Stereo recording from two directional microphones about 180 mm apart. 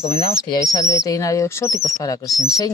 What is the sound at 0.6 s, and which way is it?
Speech, 20° left (ahead or behind).